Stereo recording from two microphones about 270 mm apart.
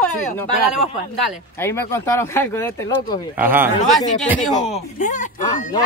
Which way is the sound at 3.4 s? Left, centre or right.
Centre.